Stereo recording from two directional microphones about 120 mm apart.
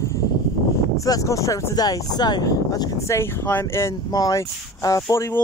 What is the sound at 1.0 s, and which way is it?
Speech, 25° left (ahead or behind).